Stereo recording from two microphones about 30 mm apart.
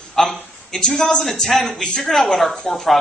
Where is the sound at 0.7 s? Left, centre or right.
Left.